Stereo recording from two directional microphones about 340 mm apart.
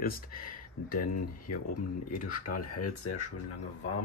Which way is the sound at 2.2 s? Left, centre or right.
Left.